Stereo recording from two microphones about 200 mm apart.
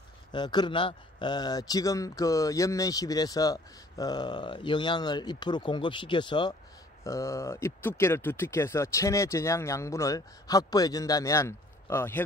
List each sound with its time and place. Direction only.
0.3 s speech: 20° left (ahead or behind)